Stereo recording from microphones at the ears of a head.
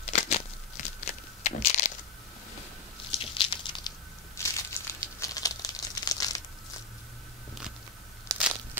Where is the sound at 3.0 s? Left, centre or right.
Left.